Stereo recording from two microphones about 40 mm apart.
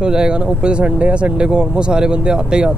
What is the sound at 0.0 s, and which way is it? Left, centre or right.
Speech, right.